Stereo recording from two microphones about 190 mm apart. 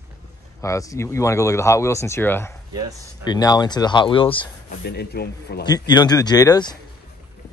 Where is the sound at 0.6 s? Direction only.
15° left (ahead or behind).